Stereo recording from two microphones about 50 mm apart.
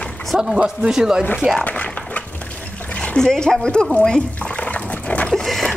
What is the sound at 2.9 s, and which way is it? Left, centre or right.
Splash, left.